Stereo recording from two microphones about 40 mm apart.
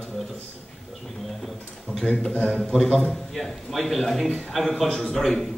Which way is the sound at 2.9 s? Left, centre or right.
Centre.